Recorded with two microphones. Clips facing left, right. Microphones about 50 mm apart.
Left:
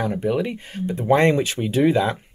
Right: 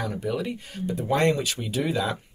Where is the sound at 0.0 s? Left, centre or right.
Left.